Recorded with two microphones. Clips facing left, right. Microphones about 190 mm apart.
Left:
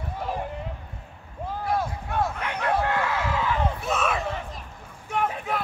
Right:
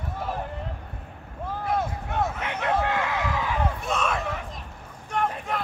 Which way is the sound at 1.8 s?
20° right (ahead or behind).